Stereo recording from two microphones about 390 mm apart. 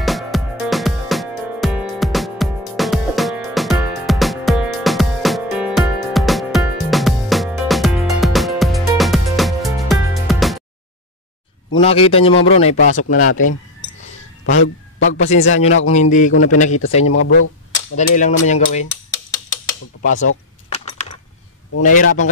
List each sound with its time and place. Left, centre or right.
0.0 s music: centre
11.7 s speech: centre
14.4 s speech: left
15.1 s speech: centre
17.0 s speech: left
17.9 s speech: centre
20.8 s coin: centre
21.7 s speech: centre